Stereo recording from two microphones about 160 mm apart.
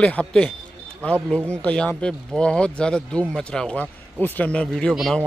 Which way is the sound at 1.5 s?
5° left (ahead or behind).